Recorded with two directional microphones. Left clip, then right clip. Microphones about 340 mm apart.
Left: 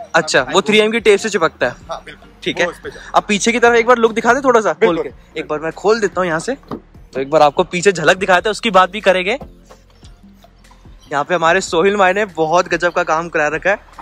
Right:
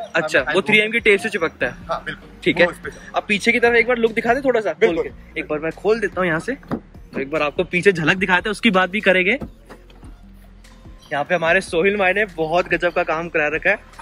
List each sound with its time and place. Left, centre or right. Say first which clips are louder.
0.1 s speech: left 5 dB; centre
5.5 s speech: left 4 dB; centre
11.1 s speech: left 4 dB; centre